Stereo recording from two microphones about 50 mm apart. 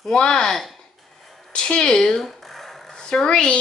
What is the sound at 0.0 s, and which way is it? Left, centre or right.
Speech, centre.